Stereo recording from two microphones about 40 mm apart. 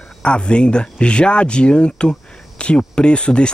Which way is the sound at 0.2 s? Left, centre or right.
Left.